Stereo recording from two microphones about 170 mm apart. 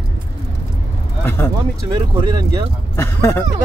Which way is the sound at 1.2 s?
15° left (ahead or behind).